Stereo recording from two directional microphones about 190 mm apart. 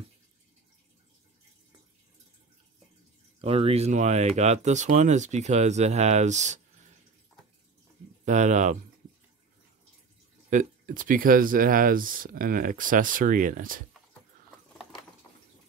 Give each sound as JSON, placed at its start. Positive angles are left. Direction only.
{"t": 3.3, "sound": "speech", "side_deg": -30}
{"t": 8.3, "sound": "speech", "side_deg": -40}
{"t": 10.5, "sound": "speech", "side_deg": -45}